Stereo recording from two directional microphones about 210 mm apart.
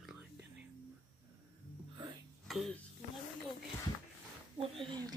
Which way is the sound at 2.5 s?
Centre (ahead or behind).